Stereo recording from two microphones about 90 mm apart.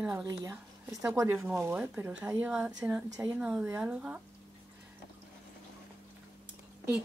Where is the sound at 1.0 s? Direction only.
30° right (ahead or behind).